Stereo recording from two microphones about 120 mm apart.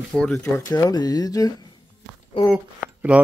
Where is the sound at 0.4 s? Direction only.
25° left (ahead or behind).